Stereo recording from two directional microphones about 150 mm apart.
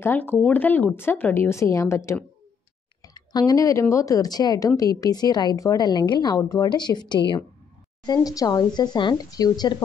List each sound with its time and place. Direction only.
0.0 s a woman's voice: 10° left (ahead or behind)